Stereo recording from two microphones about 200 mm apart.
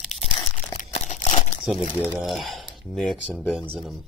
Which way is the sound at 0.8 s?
40° left (ahead or behind).